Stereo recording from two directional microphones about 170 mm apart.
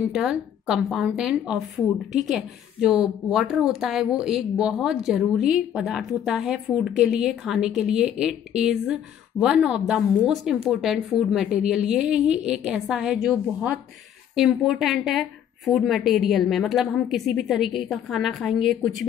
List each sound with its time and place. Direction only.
0.1 s a woman's voice: 5° right (ahead or behind)